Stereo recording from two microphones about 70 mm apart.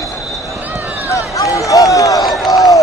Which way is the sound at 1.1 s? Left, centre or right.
Left.